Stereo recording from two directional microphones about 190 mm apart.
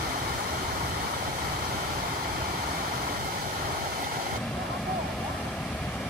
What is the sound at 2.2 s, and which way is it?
Vehicle, 55° right (ahead or behind).